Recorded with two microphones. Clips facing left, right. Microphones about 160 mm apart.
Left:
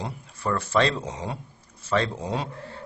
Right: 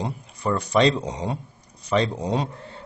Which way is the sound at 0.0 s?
15° right (ahead or behind).